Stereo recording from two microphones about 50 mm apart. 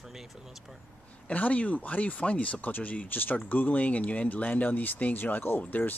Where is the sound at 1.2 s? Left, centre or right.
Left.